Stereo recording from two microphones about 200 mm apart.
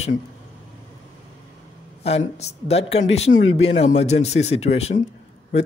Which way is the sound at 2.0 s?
30° left (ahead or behind).